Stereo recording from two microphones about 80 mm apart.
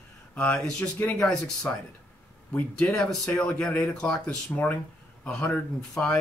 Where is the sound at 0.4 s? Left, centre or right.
Centre.